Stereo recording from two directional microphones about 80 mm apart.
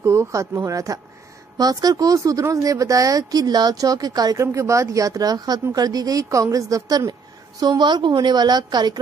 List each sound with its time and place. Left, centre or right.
0.0 s speech: right
4.4 s speech: right
7.6 s a woman's voice: right